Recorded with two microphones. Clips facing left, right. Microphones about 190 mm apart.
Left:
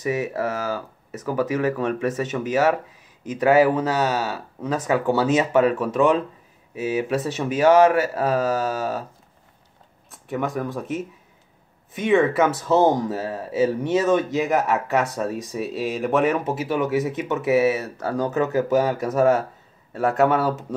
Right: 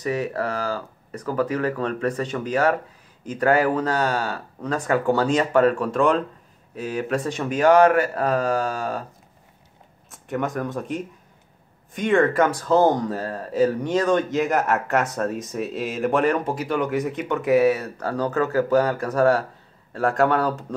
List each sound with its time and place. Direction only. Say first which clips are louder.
0.0 s speech: left 1 dB; 10° left (ahead or behind)
10.1 s speech: even; centre (ahead or behind)
18.3 s speech: right 1 dB; 20° left (ahead or behind)
18.7 s speech: even; 10° left (ahead or behind)